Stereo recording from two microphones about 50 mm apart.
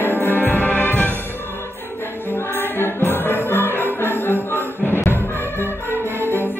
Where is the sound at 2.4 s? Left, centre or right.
Left.